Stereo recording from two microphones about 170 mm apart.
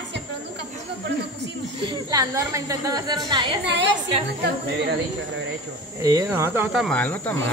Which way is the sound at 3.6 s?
90° right.